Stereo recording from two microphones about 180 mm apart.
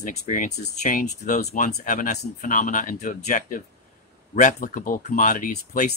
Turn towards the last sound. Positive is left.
turn(degrees=45)  # may be behind; listen again after turning